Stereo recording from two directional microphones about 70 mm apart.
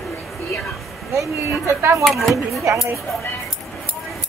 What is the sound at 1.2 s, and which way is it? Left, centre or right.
Speech, right.